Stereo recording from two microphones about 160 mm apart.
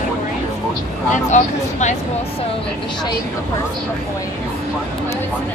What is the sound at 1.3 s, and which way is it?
Speech, 45° left (ahead or behind).